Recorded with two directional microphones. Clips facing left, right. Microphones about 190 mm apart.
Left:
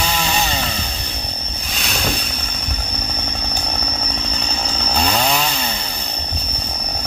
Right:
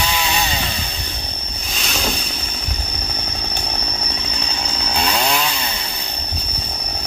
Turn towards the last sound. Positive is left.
turn(degrees=0)  # may be behind; listen again after turning